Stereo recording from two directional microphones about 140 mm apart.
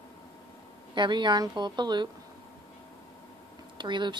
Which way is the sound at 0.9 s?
35° right (ahead or behind).